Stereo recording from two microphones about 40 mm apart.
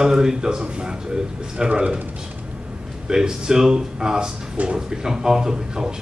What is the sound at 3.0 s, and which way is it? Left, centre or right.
A man's voice, centre.